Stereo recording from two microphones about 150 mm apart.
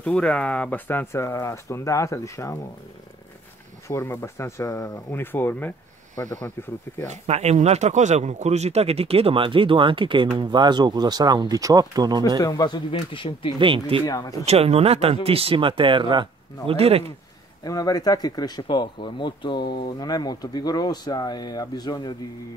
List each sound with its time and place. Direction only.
0.0 s speech: 5° left (ahead or behind)
3.8 s speech: 15° left (ahead or behind)
7.1 s speech: 45° right (ahead or behind); by 12.2 s 25° right (ahead or behind)
12.4 s speech: 25° left (ahead or behind)
13.6 s speech: 35° right (ahead or behind)
14.0 s speech: 25° left (ahead or behind)
14.4 s speech: 45° right (ahead or behind)
17.6 s speech: 25° left (ahead or behind)